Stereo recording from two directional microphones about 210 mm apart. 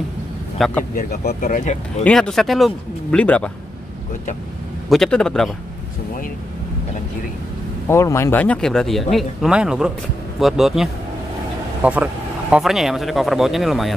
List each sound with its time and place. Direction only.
0.6 s speech: centre (ahead or behind)
0.9 s speech: 45° left (ahead or behind)
2.0 s speech: 5° left (ahead or behind)
4.8 s speech: centre (ahead or behind)
7.9 s speech: 15° left (ahead or behind)